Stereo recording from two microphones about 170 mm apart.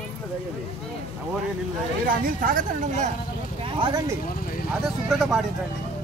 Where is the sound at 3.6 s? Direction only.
30° right (ahead or behind).